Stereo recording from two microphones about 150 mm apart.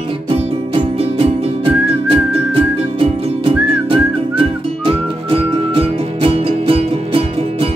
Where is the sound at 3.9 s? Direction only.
35° right (ahead or behind).